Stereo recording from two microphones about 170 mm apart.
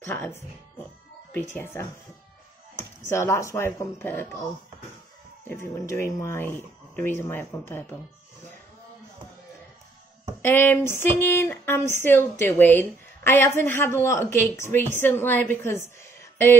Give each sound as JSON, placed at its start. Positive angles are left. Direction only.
{"t": 0.0, "sound": "speech", "side_deg": 15}
{"t": 1.5, "sound": "speech", "side_deg": 15}
{"t": 3.1, "sound": "speech", "side_deg": 15}
{"t": 5.5, "sound": "speech", "side_deg": 15}
{"t": 10.4, "sound": "speech", "side_deg": 10}